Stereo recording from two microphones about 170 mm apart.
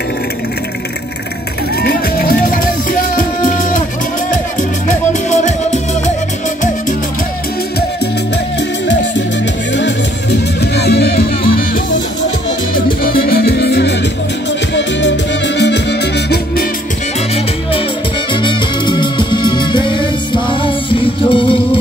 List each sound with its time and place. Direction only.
1.8 s music: 60° left (ahead or behind); by 6.1 s 45° left (ahead or behind)
10.6 s music: 75° left (ahead or behind)
14.7 s music: 90° left
18.3 s music: 30° left (ahead or behind)